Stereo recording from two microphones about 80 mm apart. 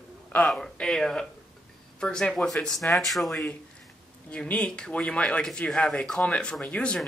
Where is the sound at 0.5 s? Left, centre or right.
Centre.